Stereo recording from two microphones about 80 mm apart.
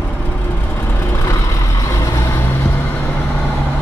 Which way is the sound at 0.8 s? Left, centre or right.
Left.